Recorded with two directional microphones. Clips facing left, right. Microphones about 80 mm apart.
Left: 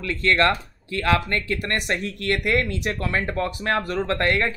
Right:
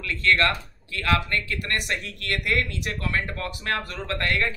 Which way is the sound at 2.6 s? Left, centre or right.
Left.